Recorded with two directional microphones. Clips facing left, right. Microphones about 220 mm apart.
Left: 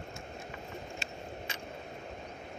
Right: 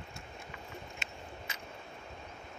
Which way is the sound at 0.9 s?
30° left (ahead or behind).